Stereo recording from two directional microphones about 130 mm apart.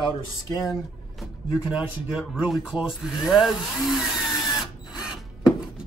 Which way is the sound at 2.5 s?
5° right (ahead or behind).